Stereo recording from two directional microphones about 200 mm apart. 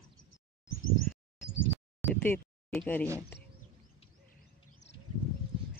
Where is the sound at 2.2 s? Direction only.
10° left (ahead or behind).